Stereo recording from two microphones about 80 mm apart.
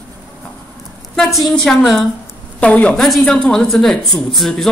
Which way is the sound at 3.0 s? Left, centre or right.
Centre.